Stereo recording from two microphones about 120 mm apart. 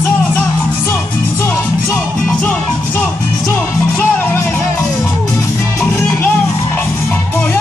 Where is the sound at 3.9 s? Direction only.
20° left (ahead or behind).